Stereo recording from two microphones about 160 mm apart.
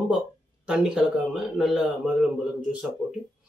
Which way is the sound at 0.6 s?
5° right (ahead or behind).